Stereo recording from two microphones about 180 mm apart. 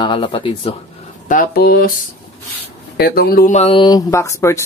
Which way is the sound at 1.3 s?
55° left (ahead or behind).